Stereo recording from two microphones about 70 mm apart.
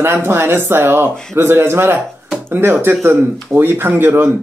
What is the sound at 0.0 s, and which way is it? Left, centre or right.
Speech, right.